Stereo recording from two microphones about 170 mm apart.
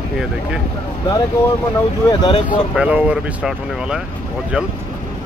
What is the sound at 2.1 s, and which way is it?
Speech, 35° left (ahead or behind).